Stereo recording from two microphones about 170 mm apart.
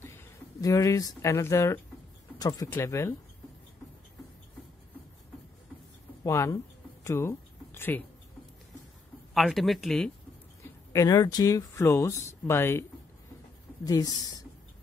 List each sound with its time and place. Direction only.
0.0 s speech: 15° left (ahead or behind)
6.2 s a sound: 20° left (ahead or behind)
9.3 s speech: centre (ahead or behind)
10.6 s speech: 20° left (ahead or behind)
13.8 s speech: 20° left (ahead or behind)